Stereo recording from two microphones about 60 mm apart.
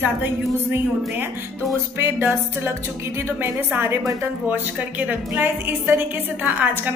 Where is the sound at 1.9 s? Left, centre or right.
Right.